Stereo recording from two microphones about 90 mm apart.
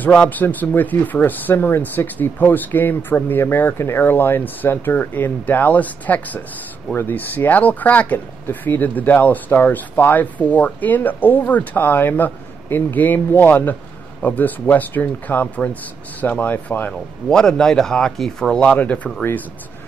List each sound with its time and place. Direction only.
0.0 s speech: 15° left (ahead or behind)
17.3 s speech: 5° left (ahead or behind)